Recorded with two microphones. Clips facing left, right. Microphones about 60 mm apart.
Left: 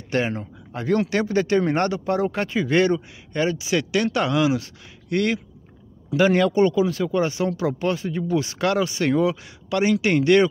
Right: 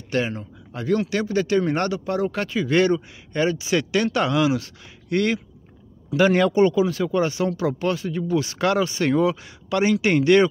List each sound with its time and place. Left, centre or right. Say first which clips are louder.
0.1 s speech: left 1 dB; left
2.3 s speech: even; left
2.8 s speech: even; centre
5.1 s speech: right 1 dB; centre
6.4 s speech: right 1 dB; centre
6.9 s speech: even; centre
7.2 s speech: right 1 dB; centre
8.5 s speech: right 2 dB; centre